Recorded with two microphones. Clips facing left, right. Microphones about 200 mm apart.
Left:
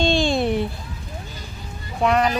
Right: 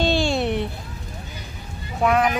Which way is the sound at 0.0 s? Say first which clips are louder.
Left 1 dB; 5° right (ahead or behind).